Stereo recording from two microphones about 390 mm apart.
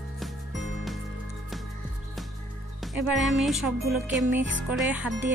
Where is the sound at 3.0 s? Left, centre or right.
Centre.